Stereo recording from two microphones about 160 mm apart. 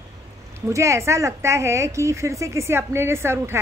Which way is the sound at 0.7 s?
20° right (ahead or behind).